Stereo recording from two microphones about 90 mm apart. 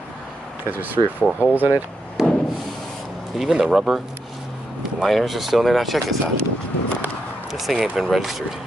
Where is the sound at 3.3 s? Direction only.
5° right (ahead or behind).